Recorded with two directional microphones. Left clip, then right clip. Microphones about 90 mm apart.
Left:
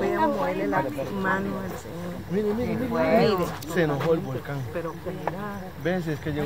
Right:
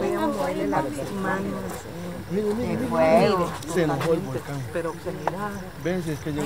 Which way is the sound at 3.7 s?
30° left (ahead or behind).